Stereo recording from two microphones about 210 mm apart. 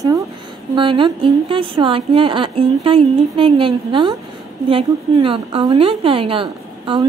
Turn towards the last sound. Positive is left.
turn(degrees=-25)  # may be behind; listen again after turning